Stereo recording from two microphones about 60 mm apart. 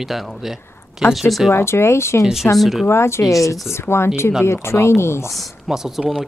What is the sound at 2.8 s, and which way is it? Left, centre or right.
Speech, left.